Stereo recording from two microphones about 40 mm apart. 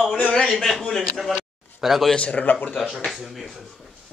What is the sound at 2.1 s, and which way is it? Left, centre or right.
Speech, left.